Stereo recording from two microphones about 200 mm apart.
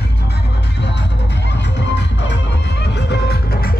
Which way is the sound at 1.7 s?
60° left (ahead or behind).